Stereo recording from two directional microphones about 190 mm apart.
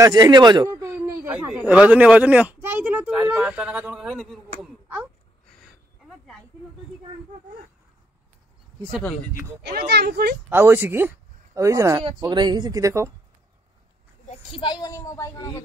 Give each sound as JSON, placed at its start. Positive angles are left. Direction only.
{"t": 0.0, "sound": "speech", "side_deg": -20}
{"t": 9.7, "sound": "speech", "side_deg": -60}
{"t": 10.5, "sound": "speech", "side_deg": -10}
{"t": 14.2, "sound": "speech", "side_deg": 25}